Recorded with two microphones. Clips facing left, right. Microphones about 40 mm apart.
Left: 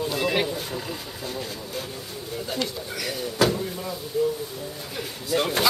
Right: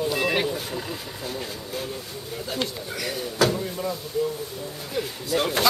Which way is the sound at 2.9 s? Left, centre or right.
Centre.